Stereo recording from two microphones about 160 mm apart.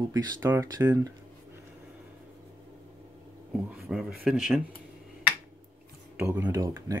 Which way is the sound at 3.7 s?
5° right (ahead or behind).